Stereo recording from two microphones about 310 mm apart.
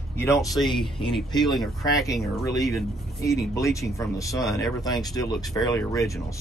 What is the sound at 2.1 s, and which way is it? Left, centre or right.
Speech, centre.